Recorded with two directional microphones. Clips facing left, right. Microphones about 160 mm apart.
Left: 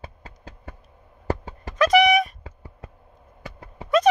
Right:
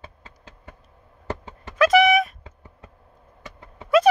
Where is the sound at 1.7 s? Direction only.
5° right (ahead or behind).